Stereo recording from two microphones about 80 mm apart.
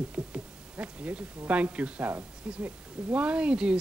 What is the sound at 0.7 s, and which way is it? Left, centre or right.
Speech, centre.